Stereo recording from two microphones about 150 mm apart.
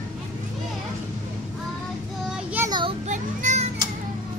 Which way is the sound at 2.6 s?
30° right (ahead or behind).